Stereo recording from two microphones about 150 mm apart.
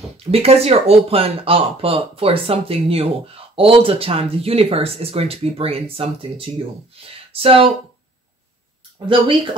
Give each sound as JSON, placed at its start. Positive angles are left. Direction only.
{"t": 0.2, "sound": "speech", "side_deg": -40}
{"t": 9.1, "sound": "speech", "side_deg": -35}